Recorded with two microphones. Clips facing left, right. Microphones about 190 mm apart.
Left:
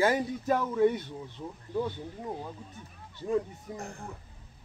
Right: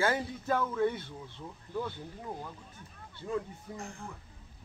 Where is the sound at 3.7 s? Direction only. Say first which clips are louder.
Left 3 dB; 40° left (ahead or behind).